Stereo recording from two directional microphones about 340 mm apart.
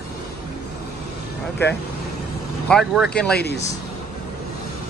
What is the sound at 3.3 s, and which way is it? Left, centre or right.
Speech, left.